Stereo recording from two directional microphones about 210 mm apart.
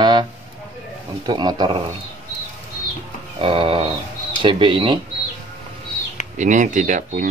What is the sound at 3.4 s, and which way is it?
Speech, 25° right (ahead or behind).